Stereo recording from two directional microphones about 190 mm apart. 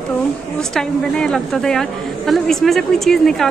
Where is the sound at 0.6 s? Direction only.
5° left (ahead or behind).